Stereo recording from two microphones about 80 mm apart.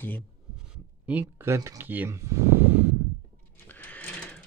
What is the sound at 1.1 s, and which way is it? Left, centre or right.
Speech, right.